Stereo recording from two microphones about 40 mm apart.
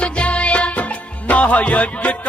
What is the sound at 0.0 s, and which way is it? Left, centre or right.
Music of bollywood, left.